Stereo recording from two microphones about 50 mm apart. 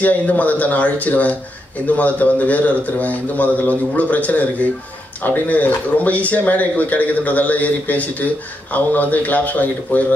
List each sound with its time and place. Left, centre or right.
0.0 s speech: left